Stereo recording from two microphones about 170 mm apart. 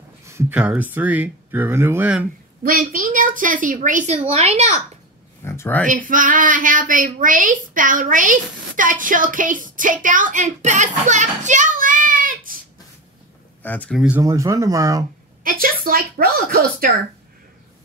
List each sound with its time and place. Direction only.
0.2 s speech: 15° right (ahead or behind)
2.6 s speech: 55° right (ahead or behind); by 4.8 s 40° right (ahead or behind)
5.4 s speech: 15° left (ahead or behind)
5.9 s speech: 50° right (ahead or behind)
13.6 s speech: 10° left (ahead or behind)
13.9 s speech: 5° right (ahead or behind)
14.2 s speech: 20° right (ahead or behind)
15.4 s speech: 60° right (ahead or behind)